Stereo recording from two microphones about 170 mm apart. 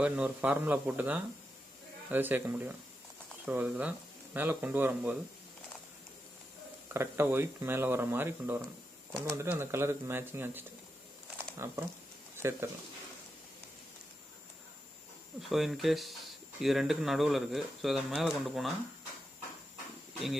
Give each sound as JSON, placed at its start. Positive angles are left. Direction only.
{"t": 0.0, "sound": "speech", "side_deg": -10}
{"t": 6.9, "sound": "speech", "side_deg": -15}
{"t": 15.4, "sound": "speech", "side_deg": 0}